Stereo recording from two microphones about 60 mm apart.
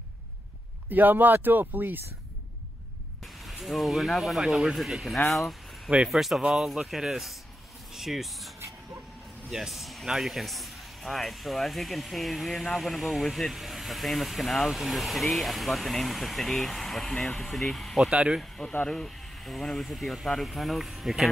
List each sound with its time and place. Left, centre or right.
0.8 s speech: right
3.4 s speech: centre
18.1 s speech: centre
18.4 s speech: centre